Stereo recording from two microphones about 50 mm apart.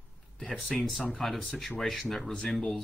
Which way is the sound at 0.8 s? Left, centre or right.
Centre.